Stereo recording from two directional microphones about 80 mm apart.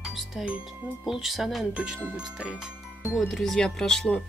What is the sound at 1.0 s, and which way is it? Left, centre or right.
Speech, centre.